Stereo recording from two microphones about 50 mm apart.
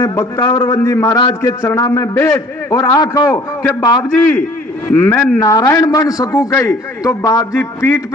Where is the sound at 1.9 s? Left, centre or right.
Left.